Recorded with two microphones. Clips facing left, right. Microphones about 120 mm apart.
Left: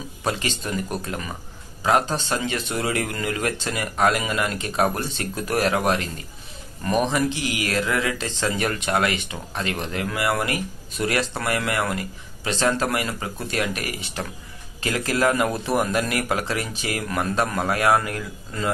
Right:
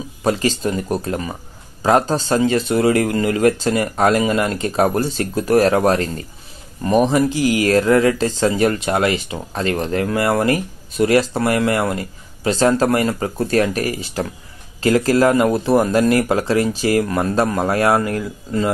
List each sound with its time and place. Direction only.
0.2 s speech: 35° right (ahead or behind)